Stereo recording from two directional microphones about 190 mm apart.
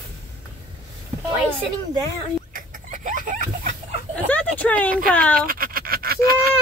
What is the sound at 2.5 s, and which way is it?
Chicken, 45° right (ahead or behind).